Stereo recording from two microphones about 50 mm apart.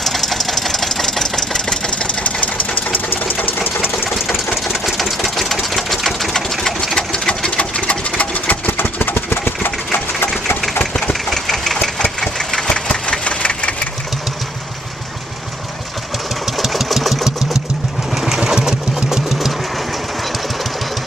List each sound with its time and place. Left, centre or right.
0.0 s engine knocking: centre
1.9 s engine: left
4.6 s sewing machine: centre; by 8.0 s left
8.2 s engine: left
11.2 s engine: centre; by 13.8 s left
16.5 s engine: centre
18.1 s sewing machine: centre
19.2 s engine: centre